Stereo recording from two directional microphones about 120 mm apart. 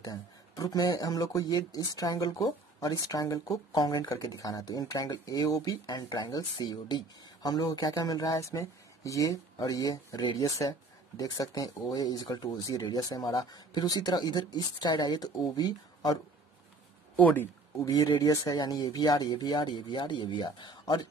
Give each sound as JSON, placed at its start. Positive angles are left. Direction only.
{"t": 0.0, "sound": "speech", "side_deg": 30}
{"t": 17.2, "sound": "speech", "side_deg": 15}
{"t": 18.1, "sound": "speech", "side_deg": 30}